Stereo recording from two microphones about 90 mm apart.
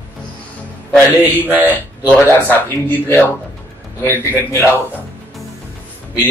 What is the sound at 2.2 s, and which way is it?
Speech, 20° left (ahead or behind).